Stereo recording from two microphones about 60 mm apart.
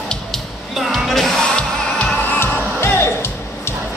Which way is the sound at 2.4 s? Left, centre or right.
Left.